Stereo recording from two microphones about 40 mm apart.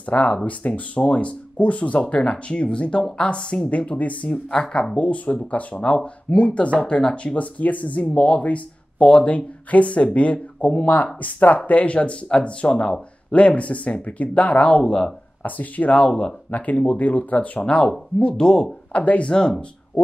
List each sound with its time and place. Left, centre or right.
0.1 s speech: left
4.3 s speech: centre
4.9 s speech: left
7.3 s speech: left
15.9 s speech: left
16.5 s speech: left; by 18.7 s centre
18.9 s speech: left
19.3 s speech: centre